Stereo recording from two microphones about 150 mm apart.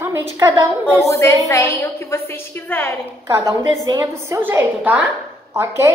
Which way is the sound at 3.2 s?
20° right (ahead or behind).